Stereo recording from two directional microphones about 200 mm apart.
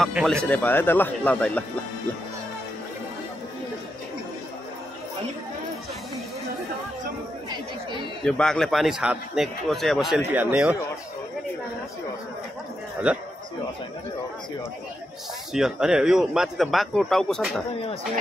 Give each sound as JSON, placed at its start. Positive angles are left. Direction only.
{"t": 0.0, "sound": "speech", "side_deg": 0}
{"t": 7.4, "sound": "chatter", "side_deg": -25}
{"t": 8.2, "sound": "speech", "side_deg": 5}
{"t": 13.1, "sound": "speech", "side_deg": -5}
{"t": 15.5, "sound": "speech", "side_deg": -5}